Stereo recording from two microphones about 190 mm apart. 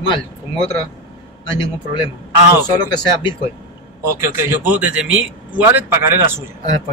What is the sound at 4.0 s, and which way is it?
A man's voice, 15° right (ahead or behind).